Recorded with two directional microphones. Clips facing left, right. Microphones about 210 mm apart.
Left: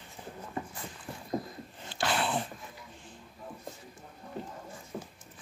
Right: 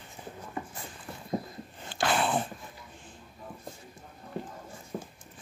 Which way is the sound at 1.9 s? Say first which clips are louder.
Right 3 dB; 50° right (ahead or behind).